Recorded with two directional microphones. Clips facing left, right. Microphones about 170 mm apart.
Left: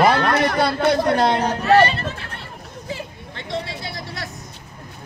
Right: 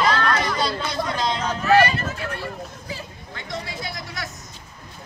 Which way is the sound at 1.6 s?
30° left (ahead or behind).